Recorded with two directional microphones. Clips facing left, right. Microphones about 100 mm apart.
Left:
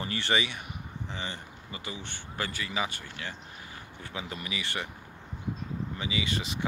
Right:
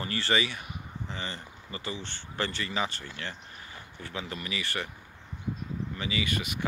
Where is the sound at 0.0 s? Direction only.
20° left (ahead or behind).